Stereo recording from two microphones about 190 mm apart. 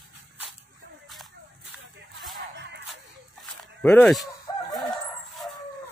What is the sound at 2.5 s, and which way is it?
Music, 65° right (ahead or behind).